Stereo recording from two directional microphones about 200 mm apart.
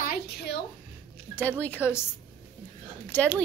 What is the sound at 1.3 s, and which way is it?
Speech, 10° left (ahead or behind).